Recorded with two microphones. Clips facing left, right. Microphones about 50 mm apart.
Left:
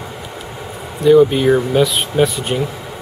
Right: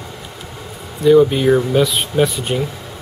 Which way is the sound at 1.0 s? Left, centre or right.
Centre.